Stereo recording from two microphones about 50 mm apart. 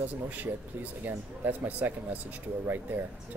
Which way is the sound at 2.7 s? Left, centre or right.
Right.